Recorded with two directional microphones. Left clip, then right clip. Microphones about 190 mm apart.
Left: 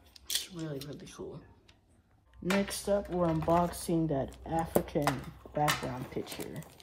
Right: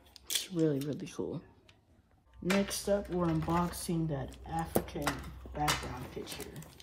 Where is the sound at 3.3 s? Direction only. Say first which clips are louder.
Left 7 dB; 55° left (ahead or behind).